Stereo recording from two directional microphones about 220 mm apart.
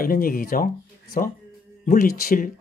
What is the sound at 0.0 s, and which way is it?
Speech, 40° left (ahead or behind).